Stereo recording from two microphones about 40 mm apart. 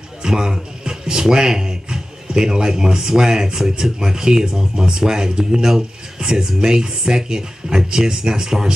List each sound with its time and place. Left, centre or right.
0.2 s speech: centre